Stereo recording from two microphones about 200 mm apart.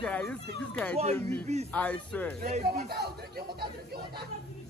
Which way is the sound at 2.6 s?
50° right (ahead or behind).